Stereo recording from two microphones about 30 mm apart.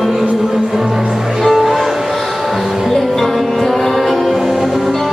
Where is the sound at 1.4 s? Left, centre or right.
Centre.